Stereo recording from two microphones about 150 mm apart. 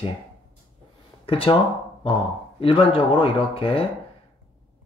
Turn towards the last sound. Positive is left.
turn(degrees=40)  # may be behind; listen again after turning